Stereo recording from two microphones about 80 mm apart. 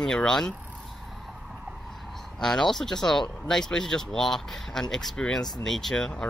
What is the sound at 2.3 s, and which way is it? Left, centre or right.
Speech, centre.